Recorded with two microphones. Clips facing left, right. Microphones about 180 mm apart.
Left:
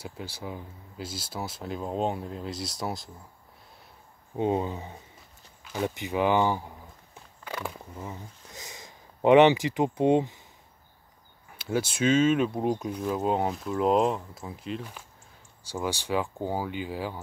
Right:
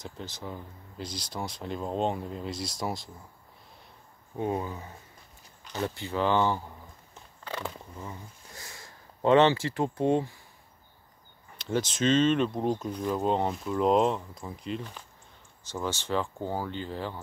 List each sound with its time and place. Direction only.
0.0 s speech: 10° left (ahead or behind)
4.4 s speech: 20° left (ahead or behind)
5.6 s speech: 10° left (ahead or behind)
11.5 s speech: 5° left (ahead or behind)